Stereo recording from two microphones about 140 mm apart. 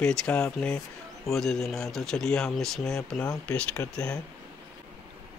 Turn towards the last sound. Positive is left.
turn(degrees=5)  # may be behind; listen again after turning